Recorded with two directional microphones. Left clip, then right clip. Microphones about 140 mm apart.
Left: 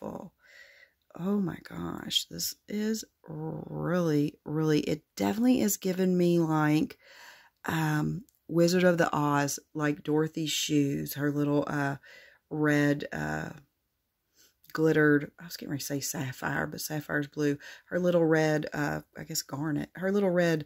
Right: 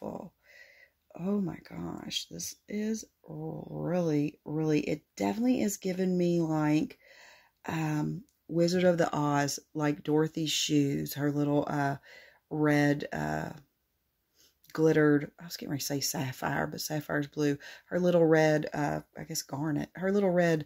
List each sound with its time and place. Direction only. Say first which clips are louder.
0.0 s a sound: even; 35° left (ahead or behind)
2.0 s speech: left 7 dB; 50° left (ahead or behind)
2.8 s speech: left 3 dB; 70° left (ahead or behind); by 3.8 s 85° left
3.8 s speech: left 2 dB; 50° left (ahead or behind); by 13.7 s 20° left (ahead or behind)
14.7 s speech: left 1 dB; 25° left (ahead or behind)